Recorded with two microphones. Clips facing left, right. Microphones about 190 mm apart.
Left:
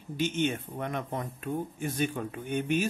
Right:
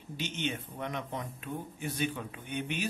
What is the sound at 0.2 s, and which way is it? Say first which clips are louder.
Speech: left 7 dB; 50° left (ahead or behind).